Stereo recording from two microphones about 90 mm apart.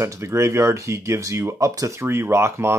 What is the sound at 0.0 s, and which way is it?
Speech, 30° right (ahead or behind).